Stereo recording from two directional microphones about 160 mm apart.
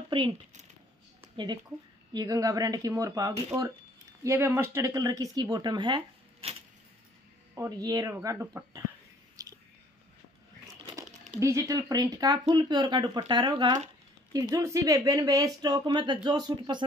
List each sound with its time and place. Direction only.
0.1 s speech: 30° right (ahead or behind)
1.2 s a sound: 30° right (ahead or behind)
2.1 s speech: 20° right (ahead or behind)
7.7 s speech: 25° right (ahead or behind)
9.4 s biting: 25° right (ahead or behind)
11.3 s speech: 20° right (ahead or behind)